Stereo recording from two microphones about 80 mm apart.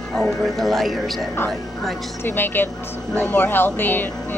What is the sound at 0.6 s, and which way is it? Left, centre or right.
Speech, centre.